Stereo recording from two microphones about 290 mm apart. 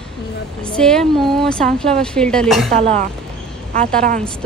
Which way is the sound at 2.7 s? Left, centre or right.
Right.